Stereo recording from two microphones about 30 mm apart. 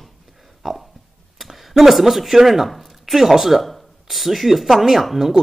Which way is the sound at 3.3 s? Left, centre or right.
Centre.